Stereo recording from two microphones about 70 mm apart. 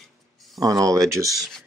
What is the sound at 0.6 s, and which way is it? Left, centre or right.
Speech, right.